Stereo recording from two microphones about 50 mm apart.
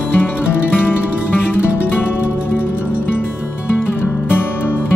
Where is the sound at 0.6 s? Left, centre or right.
Left.